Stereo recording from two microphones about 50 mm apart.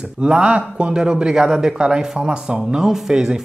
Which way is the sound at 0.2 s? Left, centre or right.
Centre.